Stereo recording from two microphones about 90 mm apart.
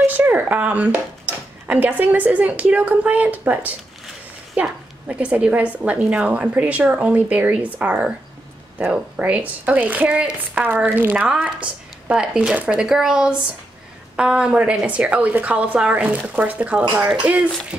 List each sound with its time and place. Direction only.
0.0 s a woman's voice: 20° right (ahead or behind)